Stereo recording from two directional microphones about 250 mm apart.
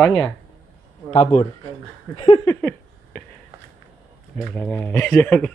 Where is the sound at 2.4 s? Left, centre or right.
Centre.